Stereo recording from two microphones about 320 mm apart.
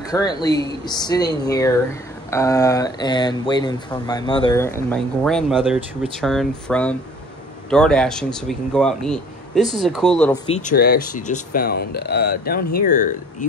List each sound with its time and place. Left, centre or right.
0.0 s speech: centre
10.5 s speech: left